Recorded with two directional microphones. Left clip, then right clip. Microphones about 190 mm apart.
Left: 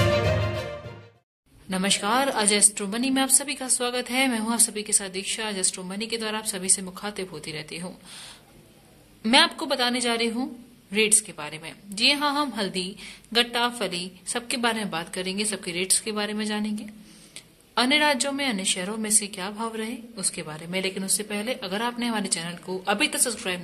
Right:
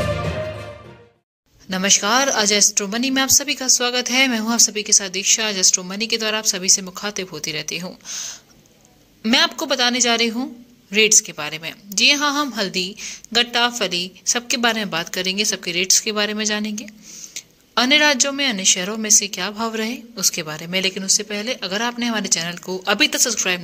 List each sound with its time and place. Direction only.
1.7 s a woman's voice: 20° right (ahead or behind)